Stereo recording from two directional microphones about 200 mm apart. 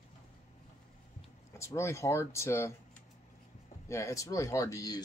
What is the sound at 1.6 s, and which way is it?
Speech, 15° left (ahead or behind).